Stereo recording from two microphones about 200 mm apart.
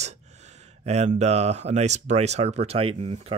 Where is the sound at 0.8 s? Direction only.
35° right (ahead or behind).